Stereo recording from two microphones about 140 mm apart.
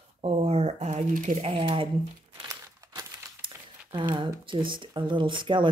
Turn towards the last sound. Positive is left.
turn(degrees=-35)  # may be behind; listen again after turning